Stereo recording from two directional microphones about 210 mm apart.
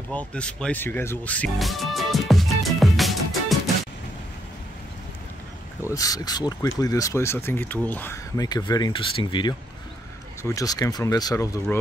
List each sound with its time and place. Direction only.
0.1 s music: 5° left (ahead or behind)
5.9 s speech: 15° left (ahead or behind)